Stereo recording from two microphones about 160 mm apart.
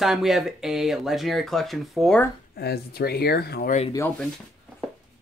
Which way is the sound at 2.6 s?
85° left.